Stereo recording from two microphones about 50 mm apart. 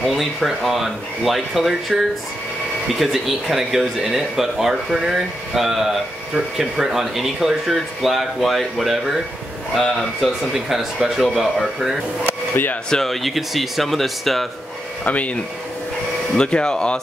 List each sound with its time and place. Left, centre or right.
0.0 s speech: centre
3.0 s speech: centre
15.0 s speech: left
16.3 s speech: centre